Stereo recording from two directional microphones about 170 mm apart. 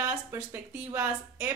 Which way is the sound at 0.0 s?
15° right (ahead or behind).